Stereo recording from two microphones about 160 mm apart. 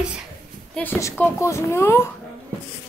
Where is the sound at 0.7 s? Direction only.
15° left (ahead or behind).